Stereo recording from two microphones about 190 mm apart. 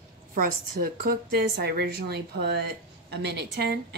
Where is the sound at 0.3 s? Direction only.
50° right (ahead or behind).